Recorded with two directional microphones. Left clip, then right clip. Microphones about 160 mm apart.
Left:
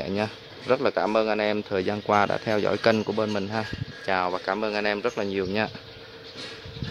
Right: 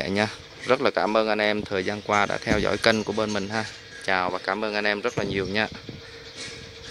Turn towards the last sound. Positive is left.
turn(degrees=-5)  # may be behind; listen again after turning